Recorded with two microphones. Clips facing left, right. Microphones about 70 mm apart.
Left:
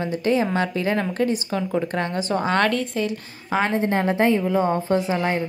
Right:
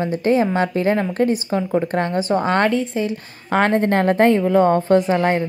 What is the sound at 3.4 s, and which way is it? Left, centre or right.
A woman's voice, right.